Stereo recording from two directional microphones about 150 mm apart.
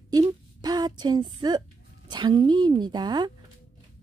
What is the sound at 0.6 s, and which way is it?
Speech, 25° right (ahead or behind).